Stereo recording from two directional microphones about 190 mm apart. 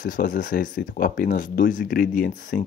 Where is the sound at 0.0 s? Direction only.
45° left (ahead or behind).